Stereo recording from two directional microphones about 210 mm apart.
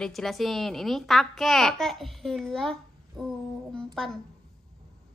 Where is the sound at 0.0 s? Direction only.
Centre (ahead or behind).